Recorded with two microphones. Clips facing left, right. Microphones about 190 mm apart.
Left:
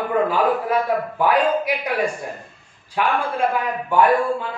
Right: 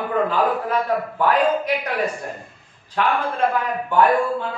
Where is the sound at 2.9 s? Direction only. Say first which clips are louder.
Even; 10° left (ahead or behind).